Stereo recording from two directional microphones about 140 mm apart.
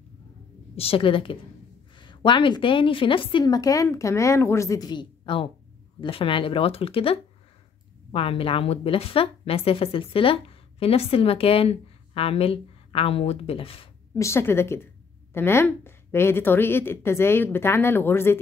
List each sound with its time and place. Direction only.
0.7 s a woman's voice: 40° left (ahead or behind)
14.1 s a woman's voice: 20° left (ahead or behind)